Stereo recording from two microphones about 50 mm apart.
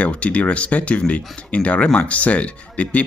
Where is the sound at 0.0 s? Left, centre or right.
Left.